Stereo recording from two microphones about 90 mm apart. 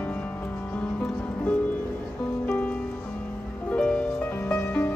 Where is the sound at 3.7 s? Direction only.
15° left (ahead or behind).